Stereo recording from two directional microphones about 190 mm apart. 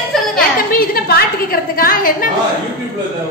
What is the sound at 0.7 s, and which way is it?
A woman's voice, 50° left (ahead or behind).